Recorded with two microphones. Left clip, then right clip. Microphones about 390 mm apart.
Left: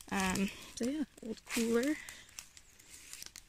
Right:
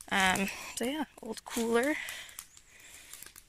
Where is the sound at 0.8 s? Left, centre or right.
Right.